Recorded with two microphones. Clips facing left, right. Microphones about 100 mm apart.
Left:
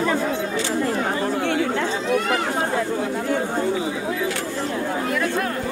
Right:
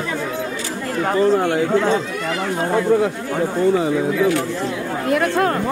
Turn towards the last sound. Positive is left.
turn(degrees=-55)  # may be behind; listen again after turning